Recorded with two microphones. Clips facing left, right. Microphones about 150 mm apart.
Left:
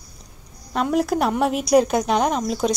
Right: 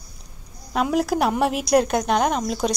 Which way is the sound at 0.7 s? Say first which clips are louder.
Even; centre (ahead or behind).